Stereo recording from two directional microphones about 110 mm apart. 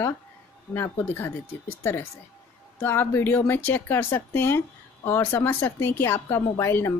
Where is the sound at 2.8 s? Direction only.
20° left (ahead or behind).